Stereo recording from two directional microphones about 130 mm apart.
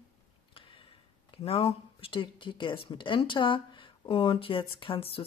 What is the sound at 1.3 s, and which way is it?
Speech, 50° left (ahead or behind).